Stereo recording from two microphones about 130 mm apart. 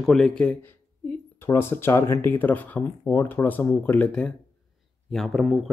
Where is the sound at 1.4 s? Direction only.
20° left (ahead or behind).